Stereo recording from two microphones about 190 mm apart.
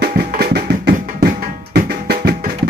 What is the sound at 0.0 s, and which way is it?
Music, 60° right (ahead or behind).